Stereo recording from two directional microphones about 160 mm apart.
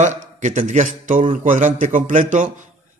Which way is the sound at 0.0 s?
50° right (ahead or behind).